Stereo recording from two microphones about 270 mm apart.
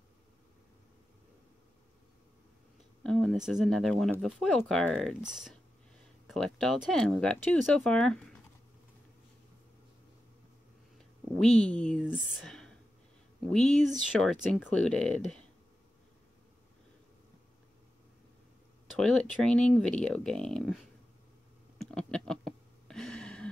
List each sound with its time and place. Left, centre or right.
3.0 s speech: centre
11.4 s speech: centre
18.9 s speech: centre
21.7 s a sound: centre